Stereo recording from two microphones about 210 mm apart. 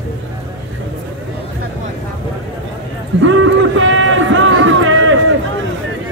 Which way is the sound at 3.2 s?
70° right (ahead or behind).